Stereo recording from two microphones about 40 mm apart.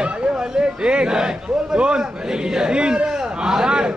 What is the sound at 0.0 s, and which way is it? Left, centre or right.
A man's voice, right.